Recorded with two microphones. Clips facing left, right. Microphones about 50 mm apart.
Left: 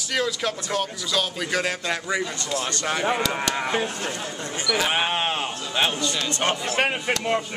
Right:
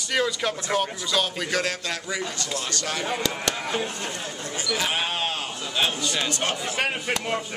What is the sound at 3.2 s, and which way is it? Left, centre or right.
Speech, centre.